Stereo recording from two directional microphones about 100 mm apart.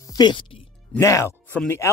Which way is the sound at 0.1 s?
50° left (ahead or behind).